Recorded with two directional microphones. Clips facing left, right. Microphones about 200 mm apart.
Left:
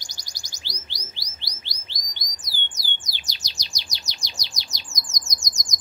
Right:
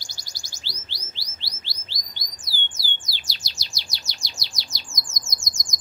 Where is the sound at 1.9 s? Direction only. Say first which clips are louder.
Even; 20° left (ahead or behind).